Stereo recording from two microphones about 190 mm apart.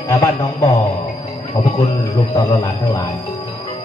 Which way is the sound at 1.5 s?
30° left (ahead or behind).